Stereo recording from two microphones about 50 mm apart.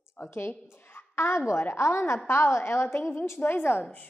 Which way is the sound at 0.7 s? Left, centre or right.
Left.